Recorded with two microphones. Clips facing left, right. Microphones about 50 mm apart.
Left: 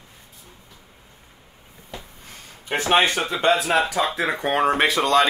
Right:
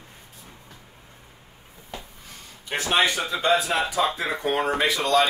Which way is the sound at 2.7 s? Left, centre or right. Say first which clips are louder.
Left 3 dB; left.